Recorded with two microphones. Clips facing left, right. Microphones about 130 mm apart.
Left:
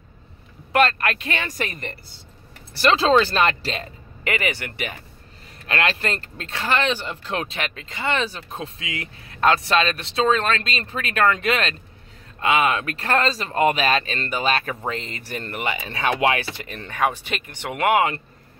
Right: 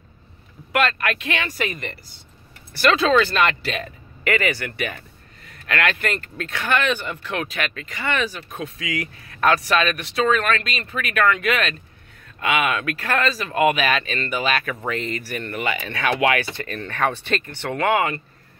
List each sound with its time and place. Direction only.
0.7 s speech: 30° left (ahead or behind)
2.7 s speech: 25° left (ahead or behind)
16.6 s speech: 15° left (ahead or behind)